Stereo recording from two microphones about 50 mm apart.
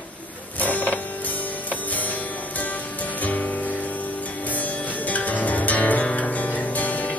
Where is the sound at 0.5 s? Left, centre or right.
Left.